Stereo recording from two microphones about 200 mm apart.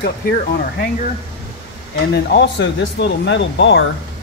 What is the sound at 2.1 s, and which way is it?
Speech, 60° left (ahead or behind).